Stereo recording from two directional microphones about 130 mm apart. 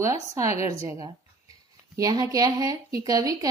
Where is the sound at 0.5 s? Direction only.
55° left (ahead or behind).